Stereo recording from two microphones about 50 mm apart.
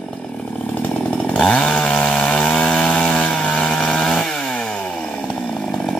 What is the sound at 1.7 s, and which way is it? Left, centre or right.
Chainsaw, centre.